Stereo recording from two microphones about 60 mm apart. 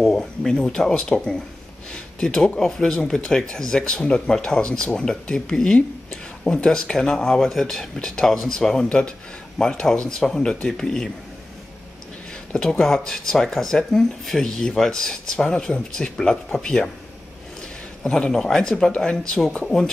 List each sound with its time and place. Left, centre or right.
0.0 s speech: centre
12.7 s speech: centre
18.1 s speech: centre